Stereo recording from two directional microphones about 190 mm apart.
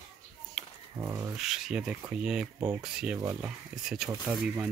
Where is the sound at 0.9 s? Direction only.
15° right (ahead or behind).